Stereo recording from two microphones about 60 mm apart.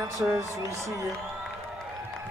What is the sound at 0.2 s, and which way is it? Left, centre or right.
Speech, right.